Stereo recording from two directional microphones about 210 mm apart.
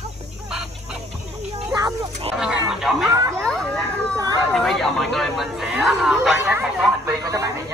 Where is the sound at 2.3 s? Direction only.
Centre (ahead or behind).